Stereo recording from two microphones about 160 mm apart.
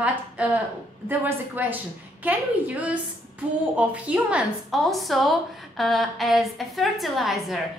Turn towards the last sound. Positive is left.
turn(degrees=0)  # may be behind; listen again after turning